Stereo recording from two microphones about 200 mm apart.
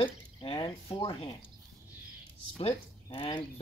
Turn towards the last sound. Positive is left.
turn(degrees=25)  # may be behind; listen again after turning